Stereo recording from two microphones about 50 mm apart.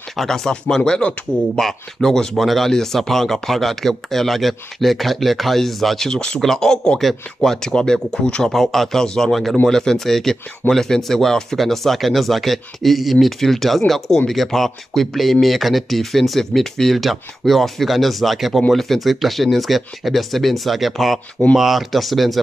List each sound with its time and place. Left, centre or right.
0.1 s speech: centre; by 1.6 s left
1.6 s speech: centre